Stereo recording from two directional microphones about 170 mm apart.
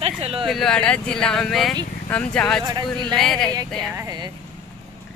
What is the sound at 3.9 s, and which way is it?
Speech, 25° right (ahead or behind).